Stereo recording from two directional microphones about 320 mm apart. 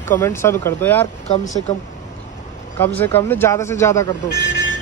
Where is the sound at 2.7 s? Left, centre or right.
Centre.